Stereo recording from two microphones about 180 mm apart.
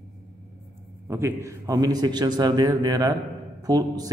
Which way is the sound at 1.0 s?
15° right (ahead or behind).